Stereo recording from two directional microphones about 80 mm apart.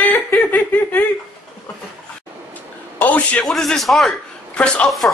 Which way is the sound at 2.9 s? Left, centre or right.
Centre.